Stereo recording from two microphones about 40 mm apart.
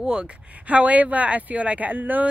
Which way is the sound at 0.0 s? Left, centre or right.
Right.